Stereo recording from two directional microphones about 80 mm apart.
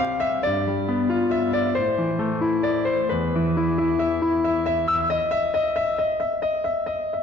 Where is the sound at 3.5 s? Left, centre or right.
Centre.